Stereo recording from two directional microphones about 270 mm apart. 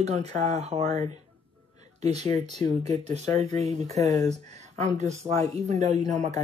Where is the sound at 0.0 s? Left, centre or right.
Right.